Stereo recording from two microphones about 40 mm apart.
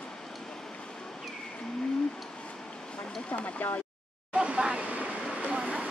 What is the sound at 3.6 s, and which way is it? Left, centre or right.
Speech, left.